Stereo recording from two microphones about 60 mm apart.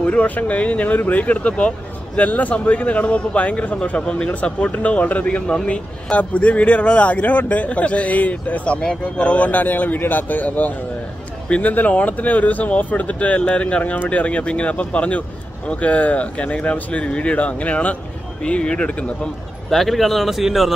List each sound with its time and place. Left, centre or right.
0.0 s a man's voice: left
19.7 s speech: centre